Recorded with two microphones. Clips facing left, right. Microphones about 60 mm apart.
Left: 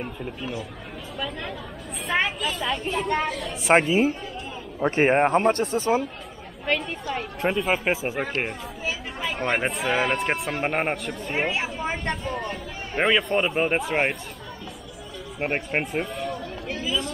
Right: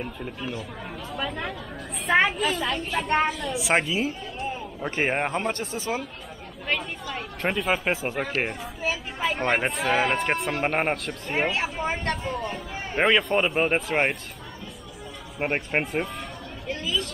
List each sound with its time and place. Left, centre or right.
0.0 s speech: centre
1.1 s speech: centre
2.5 s speech: centre
2.9 s speech: right
3.7 s a man's voice: left
7.4 s speech: centre
9.2 s speech: centre
11.5 s speech: centre
12.4 s speech: centre
15.3 s speech: centre